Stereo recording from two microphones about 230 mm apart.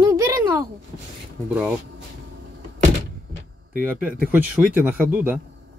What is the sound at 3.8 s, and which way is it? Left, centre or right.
A man's voice, centre.